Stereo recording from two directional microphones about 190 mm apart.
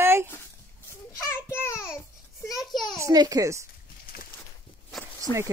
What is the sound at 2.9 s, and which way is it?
Speech, 15° right (ahead or behind).